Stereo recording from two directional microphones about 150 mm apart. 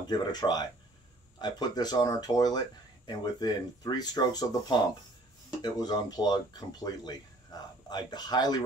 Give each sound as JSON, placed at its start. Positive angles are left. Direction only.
{"t": 0.1, "sound": "speech", "side_deg": 30}
{"t": 7.5, "sound": "a sound", "side_deg": 25}
{"t": 7.9, "sound": "speech", "side_deg": 30}